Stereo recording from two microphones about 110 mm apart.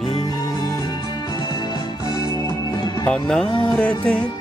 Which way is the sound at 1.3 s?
40° left (ahead or behind).